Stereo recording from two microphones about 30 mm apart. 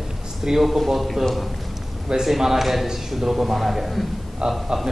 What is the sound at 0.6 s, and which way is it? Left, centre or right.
Speech, centre.